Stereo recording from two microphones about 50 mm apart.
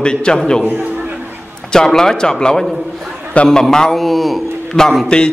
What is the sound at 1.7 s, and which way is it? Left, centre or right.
A man's voice, centre.